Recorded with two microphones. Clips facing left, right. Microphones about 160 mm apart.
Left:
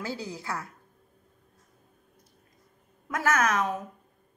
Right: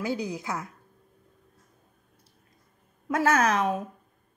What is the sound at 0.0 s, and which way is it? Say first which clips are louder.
Speech: right 5 dB; 15° right (ahead or behind).